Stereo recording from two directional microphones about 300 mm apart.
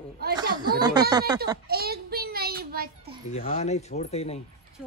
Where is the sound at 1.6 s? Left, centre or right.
Right.